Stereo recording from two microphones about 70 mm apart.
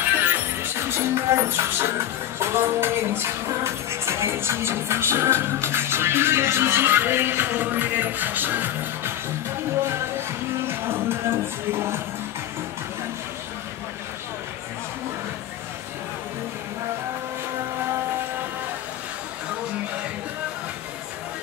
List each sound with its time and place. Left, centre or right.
0.0 s music: right
10.7 s music: right